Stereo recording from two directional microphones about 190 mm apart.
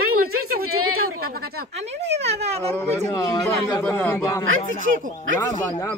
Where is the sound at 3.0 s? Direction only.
20° left (ahead or behind).